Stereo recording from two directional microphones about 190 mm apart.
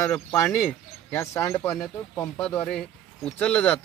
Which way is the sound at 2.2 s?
5° left (ahead or behind).